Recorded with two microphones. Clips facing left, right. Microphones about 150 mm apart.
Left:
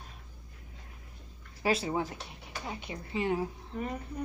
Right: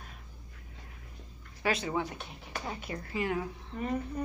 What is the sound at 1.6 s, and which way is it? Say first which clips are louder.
Speech: left 1 dB; 30° left (ahead or behind).